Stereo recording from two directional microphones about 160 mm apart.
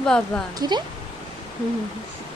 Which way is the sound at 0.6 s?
25° right (ahead or behind).